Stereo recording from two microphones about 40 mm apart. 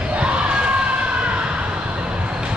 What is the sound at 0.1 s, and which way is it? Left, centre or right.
Crowd, right.